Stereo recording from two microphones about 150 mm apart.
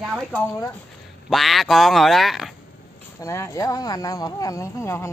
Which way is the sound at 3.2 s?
20° left (ahead or behind).